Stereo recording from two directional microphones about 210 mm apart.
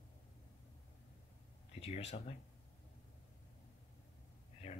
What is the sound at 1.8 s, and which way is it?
Speech, 30° left (ahead or behind).